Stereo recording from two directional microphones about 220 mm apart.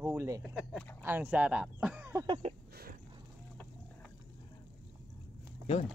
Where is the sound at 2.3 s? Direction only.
30° right (ahead or behind).